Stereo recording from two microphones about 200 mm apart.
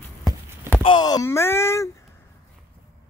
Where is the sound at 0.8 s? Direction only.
20° left (ahead or behind).